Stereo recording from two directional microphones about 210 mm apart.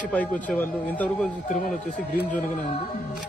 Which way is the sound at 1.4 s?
40° left (ahead or behind).